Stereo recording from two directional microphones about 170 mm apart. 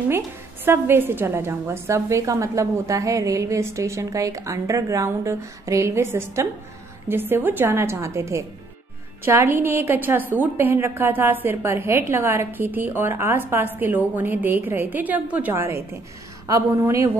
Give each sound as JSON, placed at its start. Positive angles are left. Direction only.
{"t": 0.7, "sound": "a woman's voice", "side_deg": -15}